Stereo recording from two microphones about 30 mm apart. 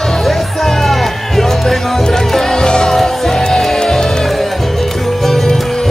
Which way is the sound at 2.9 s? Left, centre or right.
Centre.